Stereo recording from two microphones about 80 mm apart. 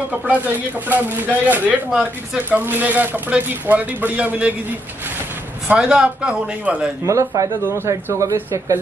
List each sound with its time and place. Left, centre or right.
0.8 s a man's voice: right
1.9 s a man's voice: centre
2.5 s a man's voice: right
5.8 s a man's voice: centre
7.1 s speech: right